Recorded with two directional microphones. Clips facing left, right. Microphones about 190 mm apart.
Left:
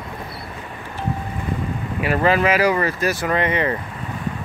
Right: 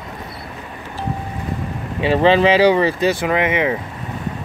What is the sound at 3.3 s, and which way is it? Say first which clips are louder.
Speech: right 2 dB; 15° right (ahead or behind).